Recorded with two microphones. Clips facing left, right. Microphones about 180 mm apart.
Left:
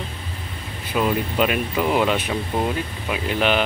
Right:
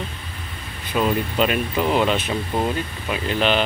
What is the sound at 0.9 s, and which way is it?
Speech, 5° left (ahead or behind).